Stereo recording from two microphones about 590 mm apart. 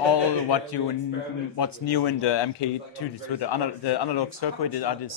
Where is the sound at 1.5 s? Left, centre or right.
Left.